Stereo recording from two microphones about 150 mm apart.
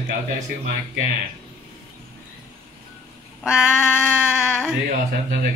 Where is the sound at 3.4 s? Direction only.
5° right (ahead or behind).